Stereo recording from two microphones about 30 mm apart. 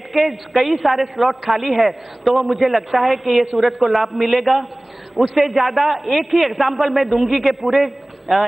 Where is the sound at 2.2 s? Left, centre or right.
Right.